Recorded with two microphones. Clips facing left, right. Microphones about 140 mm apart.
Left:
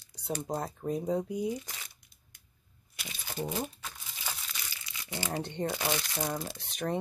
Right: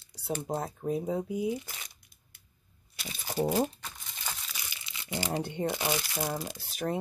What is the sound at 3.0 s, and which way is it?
Speech, 35° right (ahead or behind).